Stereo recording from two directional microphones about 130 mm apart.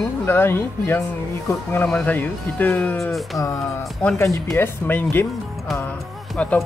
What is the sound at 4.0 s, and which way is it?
Speech, 10° left (ahead or behind).